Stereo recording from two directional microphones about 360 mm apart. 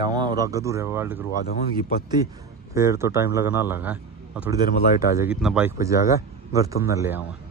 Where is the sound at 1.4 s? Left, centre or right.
Left.